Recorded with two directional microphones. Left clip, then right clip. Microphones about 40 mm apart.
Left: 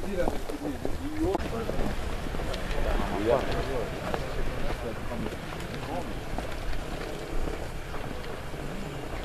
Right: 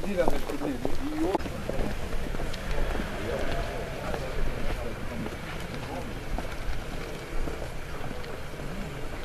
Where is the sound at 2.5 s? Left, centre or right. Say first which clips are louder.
Left 5 dB; right.